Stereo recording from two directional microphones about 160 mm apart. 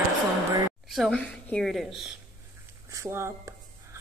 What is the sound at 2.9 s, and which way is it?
Speech, 15° right (ahead or behind).